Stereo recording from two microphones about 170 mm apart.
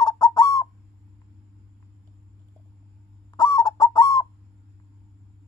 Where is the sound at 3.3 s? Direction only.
25° left (ahead or behind).